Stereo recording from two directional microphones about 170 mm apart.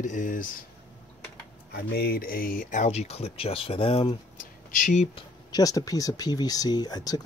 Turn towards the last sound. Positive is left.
turn(degrees=25)  # may be behind; listen again after turning